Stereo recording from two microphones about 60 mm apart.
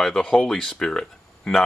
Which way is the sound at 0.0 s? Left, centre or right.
Centre.